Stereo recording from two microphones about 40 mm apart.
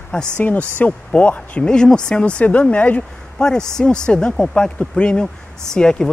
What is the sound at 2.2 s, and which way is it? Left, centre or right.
Speech, left.